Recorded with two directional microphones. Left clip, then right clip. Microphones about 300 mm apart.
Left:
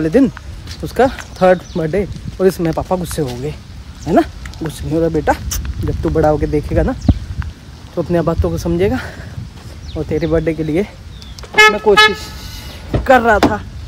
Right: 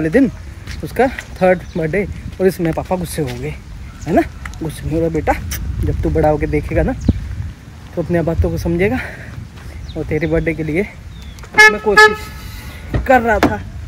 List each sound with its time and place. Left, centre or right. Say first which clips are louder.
0.0 s speech: left 1 dB; centre
8.0 s speech: left 2 dB; centre
11.5 s vehicle: even; left
13.0 s speech: left 2 dB; centre